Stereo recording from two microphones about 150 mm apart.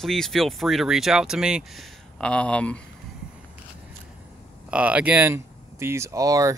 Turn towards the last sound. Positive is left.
turn(degrees=-20)  # may be behind; listen again after turning